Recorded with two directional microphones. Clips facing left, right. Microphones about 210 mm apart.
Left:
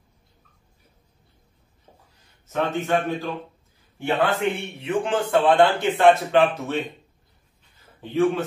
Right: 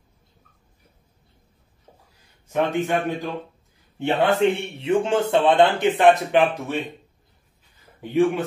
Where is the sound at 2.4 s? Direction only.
15° right (ahead or behind).